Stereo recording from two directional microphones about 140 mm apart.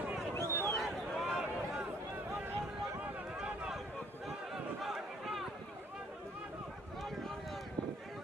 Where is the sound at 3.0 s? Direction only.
5° right (ahead or behind).